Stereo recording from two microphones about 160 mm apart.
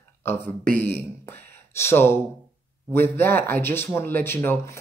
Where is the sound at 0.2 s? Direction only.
15° left (ahead or behind).